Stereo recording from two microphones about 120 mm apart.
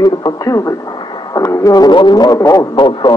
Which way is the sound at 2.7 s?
45° left (ahead or behind).